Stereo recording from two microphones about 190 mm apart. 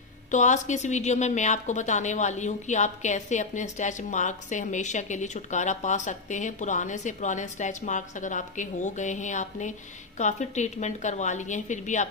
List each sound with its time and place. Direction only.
0.3 s a woman's voice: 40° left (ahead or behind)